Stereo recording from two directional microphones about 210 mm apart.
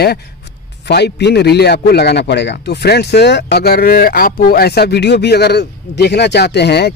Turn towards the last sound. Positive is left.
turn(degrees=50)  # may be behind; listen again after turning